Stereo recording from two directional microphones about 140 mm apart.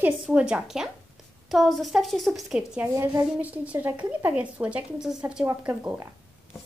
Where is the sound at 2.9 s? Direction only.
20° right (ahead or behind).